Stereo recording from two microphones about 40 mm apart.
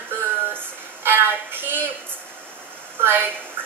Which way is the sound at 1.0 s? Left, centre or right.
Right.